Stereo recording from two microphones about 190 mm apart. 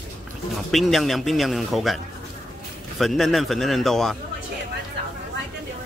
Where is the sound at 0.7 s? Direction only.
Centre (ahead or behind).